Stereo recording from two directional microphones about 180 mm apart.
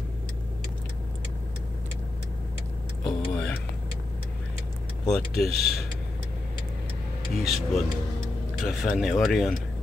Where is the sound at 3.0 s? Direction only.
5° left (ahead or behind).